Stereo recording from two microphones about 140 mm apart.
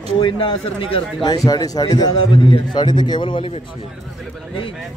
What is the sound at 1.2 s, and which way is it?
A man's voice, 30° left (ahead or behind).